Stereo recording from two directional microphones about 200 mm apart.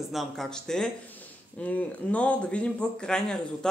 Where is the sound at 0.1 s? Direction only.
Centre (ahead or behind).